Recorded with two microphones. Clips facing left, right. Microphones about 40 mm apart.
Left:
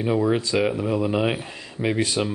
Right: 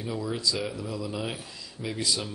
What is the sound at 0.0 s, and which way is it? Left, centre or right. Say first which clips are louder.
Speech: left 9 dB; left.